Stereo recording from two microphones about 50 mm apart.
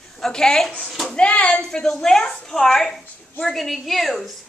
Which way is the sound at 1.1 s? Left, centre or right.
Centre.